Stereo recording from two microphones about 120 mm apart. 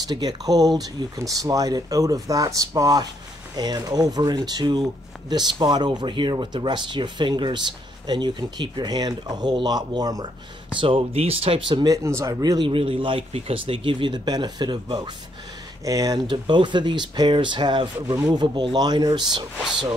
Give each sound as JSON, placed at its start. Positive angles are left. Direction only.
{"t": 0.0, "sound": "speech", "side_deg": -35}
{"t": 10.8, "sound": "speech", "side_deg": -45}
{"t": 11.9, "sound": "speech", "side_deg": -25}
{"t": 12.6, "sound": "speech", "side_deg": -50}
{"t": 19.6, "sound": "speech", "side_deg": -5}